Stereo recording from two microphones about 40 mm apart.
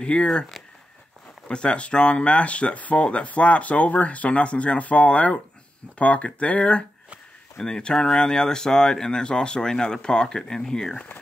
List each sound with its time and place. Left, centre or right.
0.0 s speech: left
1.5 s speech: left
7.5 s speech: left